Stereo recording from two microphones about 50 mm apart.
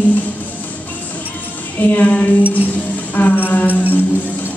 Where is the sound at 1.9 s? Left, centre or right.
Left.